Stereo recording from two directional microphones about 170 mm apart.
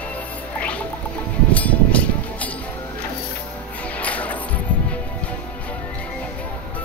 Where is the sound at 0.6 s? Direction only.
10° left (ahead or behind).